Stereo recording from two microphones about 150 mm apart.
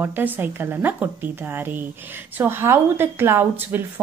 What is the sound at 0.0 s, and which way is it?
Speech, 15° right (ahead or behind).